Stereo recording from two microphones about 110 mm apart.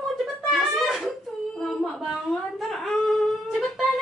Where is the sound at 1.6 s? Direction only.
5° left (ahead or behind).